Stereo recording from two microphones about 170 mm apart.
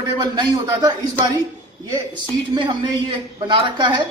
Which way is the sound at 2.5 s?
30° right (ahead or behind).